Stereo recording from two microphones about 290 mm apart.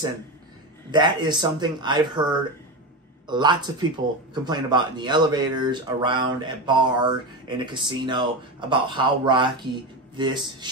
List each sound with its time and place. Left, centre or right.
0.9 s speech: centre